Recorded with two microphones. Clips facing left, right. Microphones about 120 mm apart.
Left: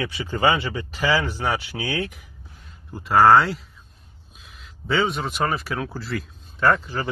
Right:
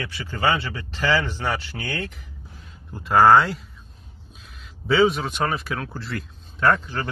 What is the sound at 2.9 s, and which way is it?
A man's voice, centre (ahead or behind).